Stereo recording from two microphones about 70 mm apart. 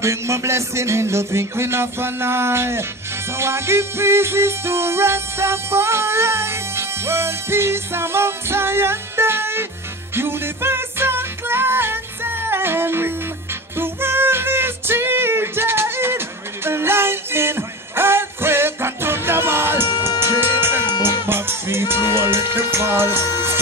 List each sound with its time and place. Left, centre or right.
0.0 s music: right
21.0 s speech: right